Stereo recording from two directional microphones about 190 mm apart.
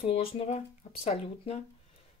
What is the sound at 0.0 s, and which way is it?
Speech, 30° left (ahead or behind).